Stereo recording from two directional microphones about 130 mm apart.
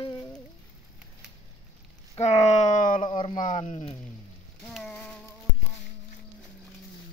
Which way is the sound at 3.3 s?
80° left.